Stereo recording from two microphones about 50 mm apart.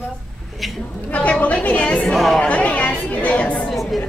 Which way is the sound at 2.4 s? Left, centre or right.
Left.